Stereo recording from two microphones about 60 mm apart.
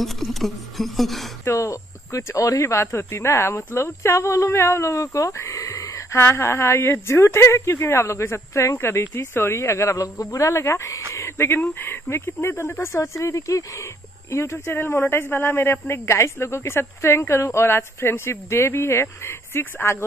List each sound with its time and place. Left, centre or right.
0.0 s speech: centre
1.4 s a woman's voice: left
5.4 s a sound: left
6.2 s a woman's voice: left
14.3 s a woman's voice: left